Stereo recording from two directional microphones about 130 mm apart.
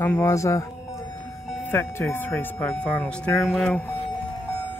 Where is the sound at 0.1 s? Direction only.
25° left (ahead or behind).